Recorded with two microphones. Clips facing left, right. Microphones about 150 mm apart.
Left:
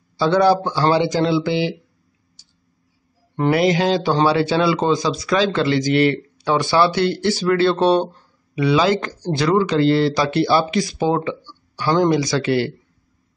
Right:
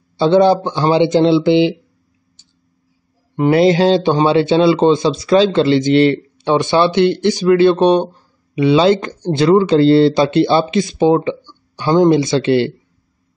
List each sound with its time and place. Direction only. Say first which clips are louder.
0.2 s speech: right 4 dB; 20° right (ahead or behind)
3.4 s speech: right 6 dB; 30° right (ahead or behind)